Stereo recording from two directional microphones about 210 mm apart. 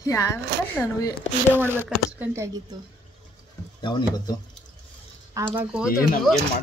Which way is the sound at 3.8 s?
20° left (ahead or behind).